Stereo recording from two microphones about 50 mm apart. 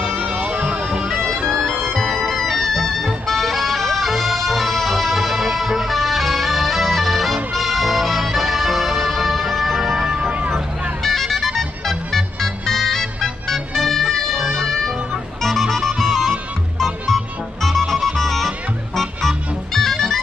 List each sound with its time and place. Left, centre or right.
0.2 s music: right
0.9 s music: centre
1.9 s music: centre
11.1 s music: centre